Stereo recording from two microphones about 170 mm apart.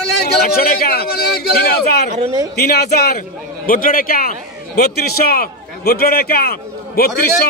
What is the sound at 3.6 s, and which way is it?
A man's voice, 55° left (ahead or behind).